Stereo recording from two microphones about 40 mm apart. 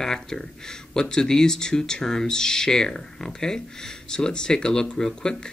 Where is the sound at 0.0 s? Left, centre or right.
Centre.